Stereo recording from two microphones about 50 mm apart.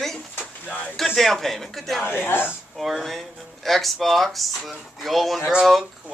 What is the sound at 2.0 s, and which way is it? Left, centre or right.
Speech, left.